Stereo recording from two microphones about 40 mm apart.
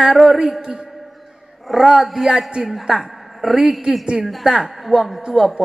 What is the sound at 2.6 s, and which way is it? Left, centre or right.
A woman's voice, centre.